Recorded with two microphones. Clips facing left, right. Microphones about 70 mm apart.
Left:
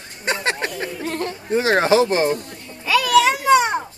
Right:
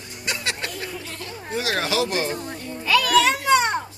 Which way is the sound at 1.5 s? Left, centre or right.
Left.